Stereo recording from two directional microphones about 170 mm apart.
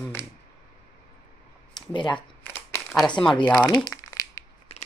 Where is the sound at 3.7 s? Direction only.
20° left (ahead or behind).